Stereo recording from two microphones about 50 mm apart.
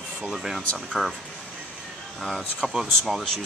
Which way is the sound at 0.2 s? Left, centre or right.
Centre.